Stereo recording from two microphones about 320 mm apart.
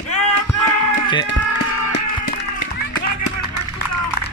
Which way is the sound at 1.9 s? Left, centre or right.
Left.